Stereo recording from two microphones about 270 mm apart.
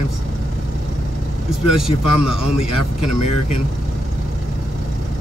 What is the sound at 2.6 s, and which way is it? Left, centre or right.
Speech, left.